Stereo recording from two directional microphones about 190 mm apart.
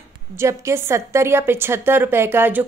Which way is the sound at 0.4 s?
15° right (ahead or behind).